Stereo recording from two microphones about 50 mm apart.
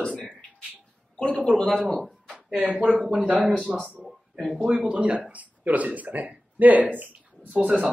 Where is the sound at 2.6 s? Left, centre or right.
Right.